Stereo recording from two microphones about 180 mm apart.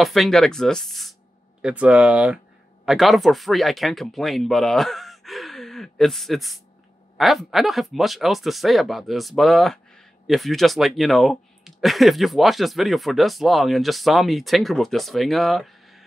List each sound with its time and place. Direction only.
0.0 s speech: centre (ahead or behind)